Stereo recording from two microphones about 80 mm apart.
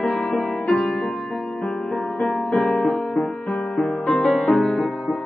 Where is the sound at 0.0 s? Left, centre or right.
Centre.